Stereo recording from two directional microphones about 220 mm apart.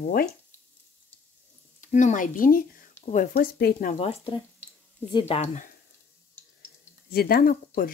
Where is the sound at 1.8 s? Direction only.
35° left (ahead or behind).